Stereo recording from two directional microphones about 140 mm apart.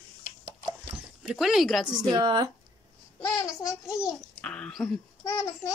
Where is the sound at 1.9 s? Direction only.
30° right (ahead or behind).